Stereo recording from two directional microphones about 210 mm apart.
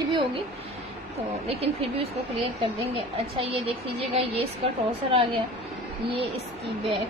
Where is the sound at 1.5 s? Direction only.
30° right (ahead or behind).